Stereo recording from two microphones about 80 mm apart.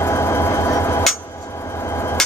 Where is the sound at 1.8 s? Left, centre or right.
Left.